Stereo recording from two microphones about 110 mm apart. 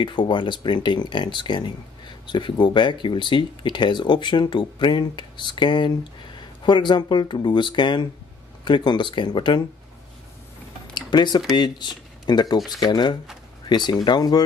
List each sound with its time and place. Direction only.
0.0 s speech: 45° left (ahead or behind)
11.0 s speech: 40° left (ahead or behind)
12.5 s speech: centre (ahead or behind)
12.8 s speech: 40° left (ahead or behind)